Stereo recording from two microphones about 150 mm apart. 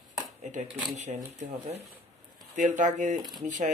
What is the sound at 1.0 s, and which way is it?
Speech, 50° right (ahead or behind).